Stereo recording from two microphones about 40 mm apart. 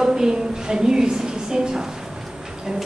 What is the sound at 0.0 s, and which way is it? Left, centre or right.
A woman's voice, centre.